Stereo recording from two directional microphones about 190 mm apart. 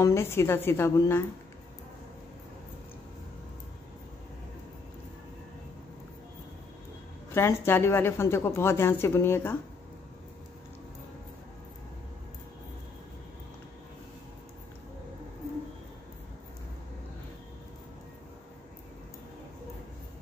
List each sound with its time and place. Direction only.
0.0 s a woman's voice: 15° left (ahead or behind)
7.3 s a woman's voice: 10° left (ahead or behind)